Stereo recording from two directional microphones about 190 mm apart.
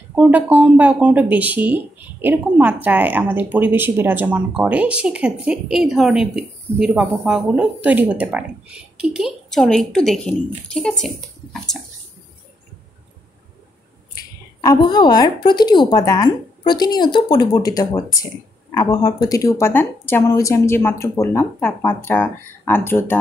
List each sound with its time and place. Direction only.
0.1 s speech: 10° right (ahead or behind)
14.6 s a woman's voice: 20° left (ahead or behind)